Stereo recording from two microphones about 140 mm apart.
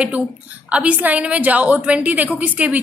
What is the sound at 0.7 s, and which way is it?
A woman's voice, 10° right (ahead or behind).